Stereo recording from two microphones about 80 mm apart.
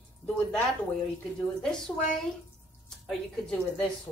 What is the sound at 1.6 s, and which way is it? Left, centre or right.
A woman's voice, centre.